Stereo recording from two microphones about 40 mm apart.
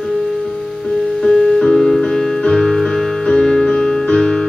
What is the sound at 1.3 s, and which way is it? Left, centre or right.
Music, centre.